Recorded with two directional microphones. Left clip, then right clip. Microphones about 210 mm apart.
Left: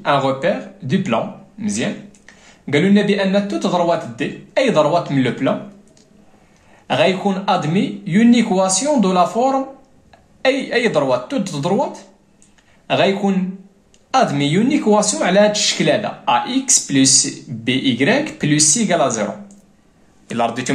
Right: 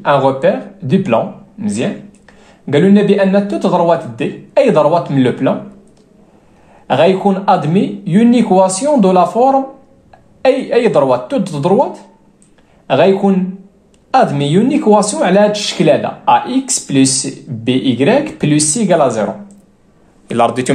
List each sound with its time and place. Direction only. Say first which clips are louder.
0.0 s speech: right 6 dB; 20° right (ahead or behind)
6.9 s a man's voice: right 5 dB; 20° right (ahead or behind)